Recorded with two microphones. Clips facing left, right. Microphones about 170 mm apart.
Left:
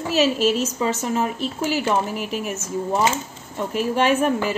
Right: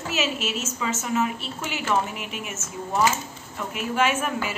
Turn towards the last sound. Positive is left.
turn(degrees=35)  # may be behind; listen again after turning